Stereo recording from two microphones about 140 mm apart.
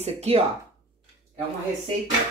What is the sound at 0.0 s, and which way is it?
Speech, 50° right (ahead or behind).